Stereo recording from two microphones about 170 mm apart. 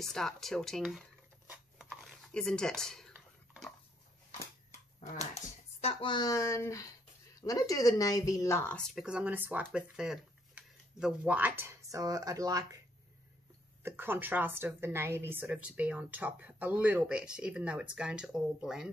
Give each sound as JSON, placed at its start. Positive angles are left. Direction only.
{"t": 0.0, "sound": "speech", "side_deg": 5}
{"t": 1.5, "sound": "a sound", "side_deg": -5}
{"t": 5.0, "sound": "speech", "side_deg": 45}
{"t": 13.8, "sound": "a woman's voice", "side_deg": -15}